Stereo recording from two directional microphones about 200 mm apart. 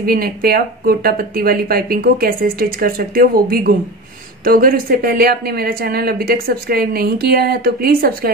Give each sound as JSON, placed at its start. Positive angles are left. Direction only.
{"t": 0.0, "sound": "speech", "side_deg": -50}